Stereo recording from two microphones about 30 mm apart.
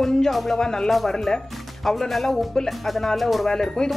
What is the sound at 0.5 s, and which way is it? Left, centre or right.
Speech, left.